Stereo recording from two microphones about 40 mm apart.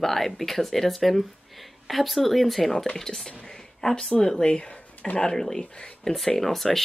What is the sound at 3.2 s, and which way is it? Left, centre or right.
Speech, centre.